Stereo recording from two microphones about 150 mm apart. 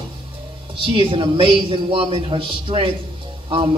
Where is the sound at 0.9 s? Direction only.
35° right (ahead or behind).